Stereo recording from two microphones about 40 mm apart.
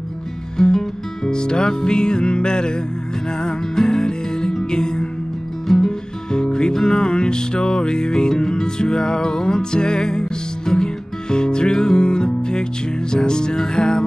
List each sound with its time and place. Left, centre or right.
0.6 s music: centre